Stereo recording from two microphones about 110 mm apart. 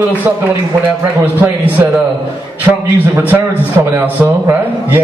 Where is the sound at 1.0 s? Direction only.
15° right (ahead or behind).